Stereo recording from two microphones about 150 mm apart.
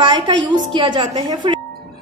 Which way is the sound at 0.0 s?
30° right (ahead or behind).